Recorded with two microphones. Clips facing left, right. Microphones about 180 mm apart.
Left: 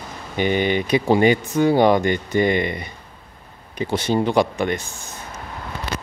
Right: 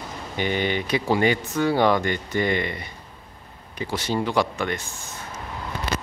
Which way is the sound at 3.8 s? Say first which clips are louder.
Left 5 dB; 20° left (ahead or behind).